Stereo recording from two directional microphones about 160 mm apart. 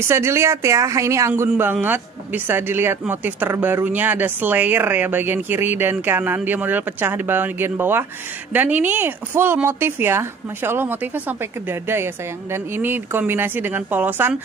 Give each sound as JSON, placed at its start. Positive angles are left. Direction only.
{"t": 0.0, "sound": "a man's voice", "side_deg": -15}
{"t": 12.7, "sound": "a man's voice", "side_deg": -15}